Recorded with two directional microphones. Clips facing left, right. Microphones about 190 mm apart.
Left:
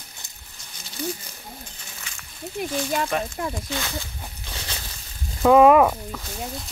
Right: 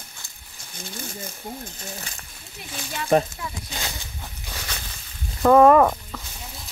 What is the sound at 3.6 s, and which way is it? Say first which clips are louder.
Speech: left 4 dB; 20° right (ahead or behind).